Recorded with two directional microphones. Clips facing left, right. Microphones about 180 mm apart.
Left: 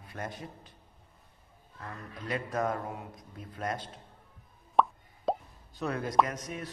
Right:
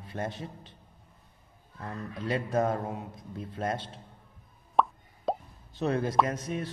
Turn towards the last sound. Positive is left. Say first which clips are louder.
# right 1 dB
turn(degrees=-30)  # may be behind; listen again after turning